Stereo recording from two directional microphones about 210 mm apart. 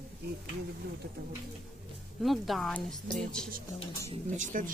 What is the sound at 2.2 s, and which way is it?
Speech, centre (ahead or behind).